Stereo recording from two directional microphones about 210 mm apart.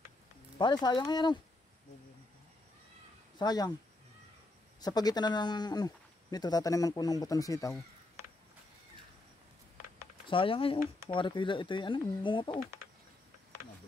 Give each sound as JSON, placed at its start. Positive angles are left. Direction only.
{"t": 0.6, "sound": "speech", "side_deg": 20}
{"t": 3.3, "sound": "speech", "side_deg": 20}
{"t": 4.7, "sound": "speech", "side_deg": 20}
{"t": 10.2, "sound": "speech", "side_deg": 25}